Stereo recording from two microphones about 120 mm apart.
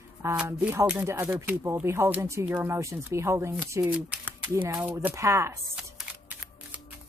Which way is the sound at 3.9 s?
10° right (ahead or behind).